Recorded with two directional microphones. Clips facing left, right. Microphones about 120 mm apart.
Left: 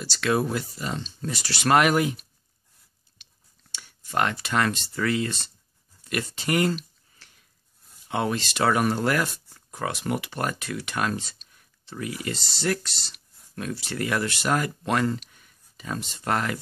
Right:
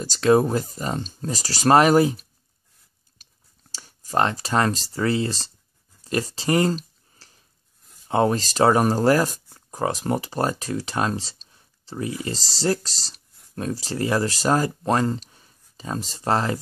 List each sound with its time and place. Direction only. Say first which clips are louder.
0.0 s speech: right 7 dB; 40° right (ahead or behind)
3.2 s chewing: even; 40° right (ahead or behind)
3.7 s speech: right 4 dB; 35° right (ahead or behind)
6.0 s a sound: right 5 dB; 30° right (ahead or behind)
8.1 s speech: right 6 dB; 35° right (ahead or behind)